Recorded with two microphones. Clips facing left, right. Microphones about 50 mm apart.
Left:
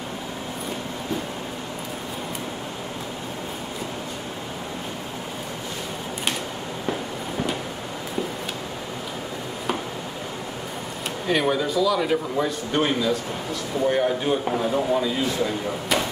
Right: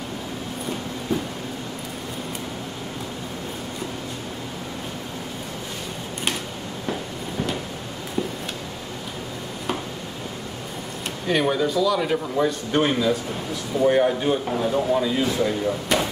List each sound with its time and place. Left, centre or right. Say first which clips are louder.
11.2 s a man's voice: right 1 dB; centre